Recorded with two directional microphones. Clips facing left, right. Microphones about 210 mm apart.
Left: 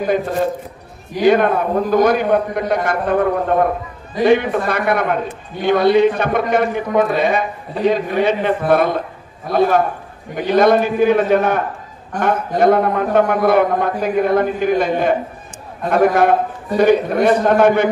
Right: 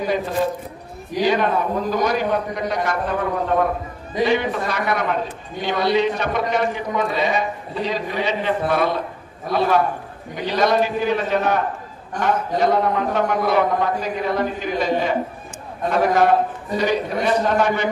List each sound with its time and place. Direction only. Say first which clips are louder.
1.2 s a man's voice: left 6 dB; 55° left (ahead or behind)